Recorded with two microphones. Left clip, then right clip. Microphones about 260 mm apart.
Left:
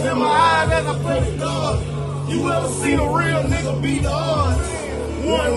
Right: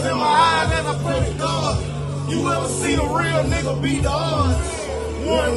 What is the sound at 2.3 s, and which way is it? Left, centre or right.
Music, centre.